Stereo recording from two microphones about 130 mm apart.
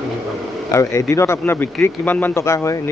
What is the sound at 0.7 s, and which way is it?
Speech, 25° left (ahead or behind).